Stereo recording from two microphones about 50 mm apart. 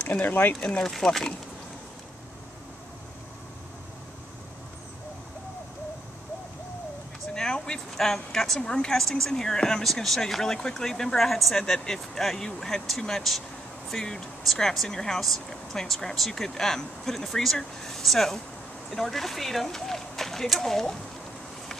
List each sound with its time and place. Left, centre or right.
0.0 s speech: left
0.6 s speech: left
0.8 s speech: centre
7.3 s speech: centre